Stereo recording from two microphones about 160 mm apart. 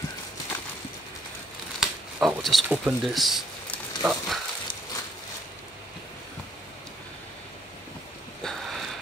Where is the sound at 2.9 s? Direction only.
Centre (ahead or behind).